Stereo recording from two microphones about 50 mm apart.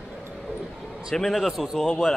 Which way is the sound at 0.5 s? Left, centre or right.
Centre.